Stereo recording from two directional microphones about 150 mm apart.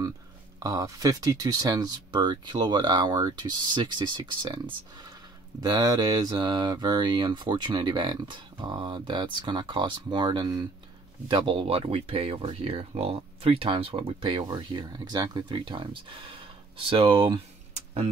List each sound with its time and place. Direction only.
0.6 s speech: 25° right (ahead or behind)
5.6 s speech: 25° right (ahead or behind)
17.7 s a sound: 45° right (ahead or behind)